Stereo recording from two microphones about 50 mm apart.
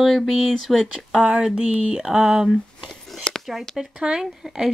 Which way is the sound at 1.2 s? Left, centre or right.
Centre.